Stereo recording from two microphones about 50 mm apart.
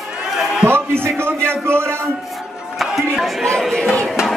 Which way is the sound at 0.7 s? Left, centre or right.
Right.